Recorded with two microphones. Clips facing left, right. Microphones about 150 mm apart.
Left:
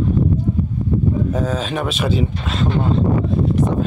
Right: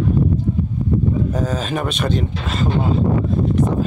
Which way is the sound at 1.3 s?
Centre (ahead or behind).